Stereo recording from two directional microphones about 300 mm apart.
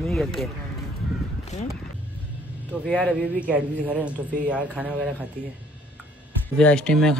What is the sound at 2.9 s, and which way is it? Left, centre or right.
Speech, centre.